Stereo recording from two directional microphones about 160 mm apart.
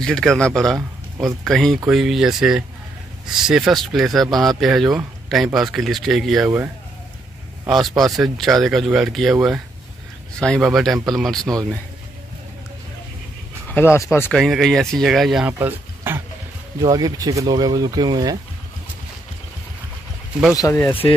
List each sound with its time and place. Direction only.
0.0 s speech: centre (ahead or behind)
6.4 s speech: 15° right (ahead or behind)
7.6 s speech: centre (ahead or behind)
13.7 s speech: 15° left (ahead or behind)
14.3 s speech: centre (ahead or behind)
15.6 s a sound: 15° right (ahead or behind)
16.8 s speech: 25° right (ahead or behind)
20.5 s speech: 20° left (ahead or behind)